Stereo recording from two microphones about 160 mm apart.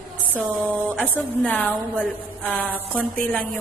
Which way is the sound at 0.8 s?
Centre (ahead or behind).